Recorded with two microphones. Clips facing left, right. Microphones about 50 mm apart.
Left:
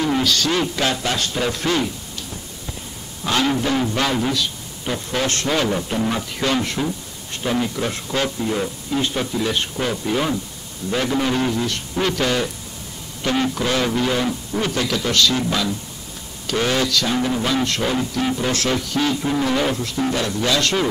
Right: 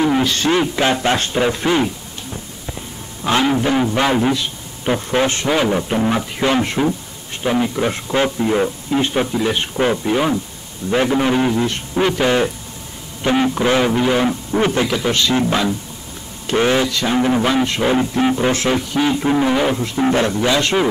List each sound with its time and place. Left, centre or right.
0.0 s speech: right
3.4 s speech: centre